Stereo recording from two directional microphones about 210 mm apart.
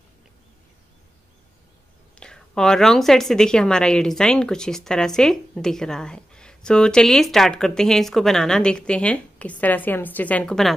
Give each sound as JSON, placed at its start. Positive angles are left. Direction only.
{"t": 2.1, "sound": "a woman's voice", "side_deg": 5}